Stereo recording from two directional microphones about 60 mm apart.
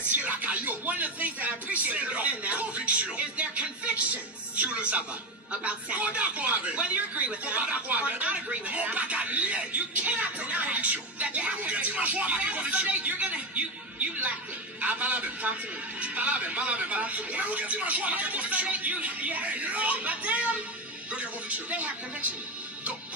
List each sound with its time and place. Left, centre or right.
0.1 s music: right
5.5 s speech: right